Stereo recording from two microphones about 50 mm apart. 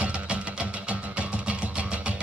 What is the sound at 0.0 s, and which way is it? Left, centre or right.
Music, right.